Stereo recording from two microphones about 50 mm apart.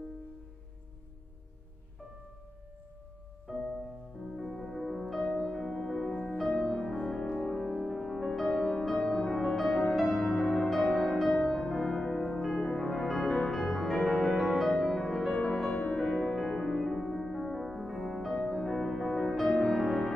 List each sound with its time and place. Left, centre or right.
3.5 s music: left
4.2 s music: centre; by 7.9 s left
7.9 s music: centre
12.5 s music: centre
12.9 s music: centre